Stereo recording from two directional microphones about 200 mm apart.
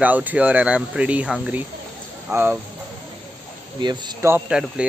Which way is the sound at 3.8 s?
20° right (ahead or behind).